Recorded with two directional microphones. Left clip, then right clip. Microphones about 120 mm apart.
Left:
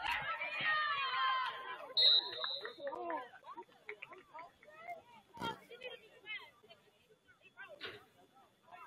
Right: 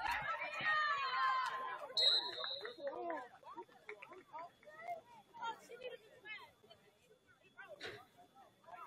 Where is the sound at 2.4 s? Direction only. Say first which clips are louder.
Left 3 dB; 30° left (ahead or behind).